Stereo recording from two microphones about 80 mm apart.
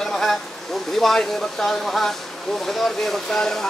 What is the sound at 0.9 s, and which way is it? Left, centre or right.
Speech, centre.